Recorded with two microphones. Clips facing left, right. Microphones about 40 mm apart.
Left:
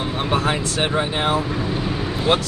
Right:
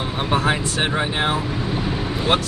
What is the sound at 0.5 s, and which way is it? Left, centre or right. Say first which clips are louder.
Speech: even; centre.